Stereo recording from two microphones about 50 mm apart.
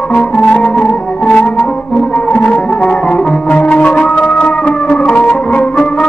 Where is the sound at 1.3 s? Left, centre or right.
Left.